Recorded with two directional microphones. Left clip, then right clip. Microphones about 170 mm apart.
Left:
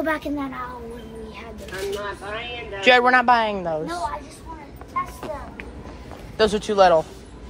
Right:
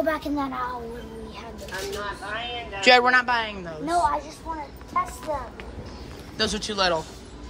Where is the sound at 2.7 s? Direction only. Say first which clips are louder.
Left 1 dB; 15° right (ahead or behind).